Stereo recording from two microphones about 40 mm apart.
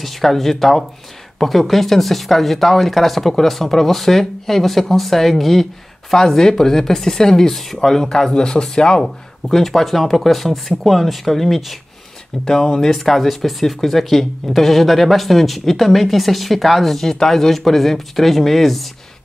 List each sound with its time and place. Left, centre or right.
0.0 s speech: centre
9.6 s speech: centre
12.4 s speech: centre